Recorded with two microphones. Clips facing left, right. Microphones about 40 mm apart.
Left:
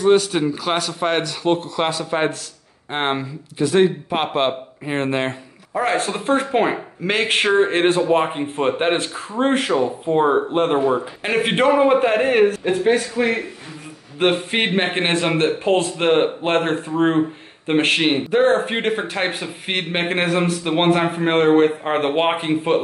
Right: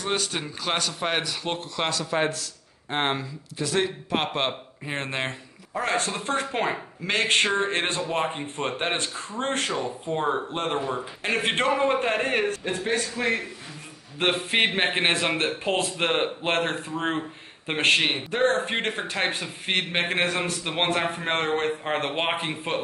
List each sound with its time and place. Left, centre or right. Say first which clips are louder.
0.0 s speech: left 12 dB; centre
1.9 s speech: left 2 dB; centre
14.2 s speech: left 4 dB; centre